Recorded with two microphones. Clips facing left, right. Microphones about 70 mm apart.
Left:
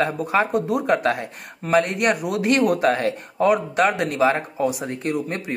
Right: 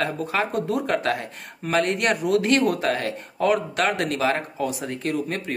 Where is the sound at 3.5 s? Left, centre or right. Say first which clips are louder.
Left 3 dB; centre.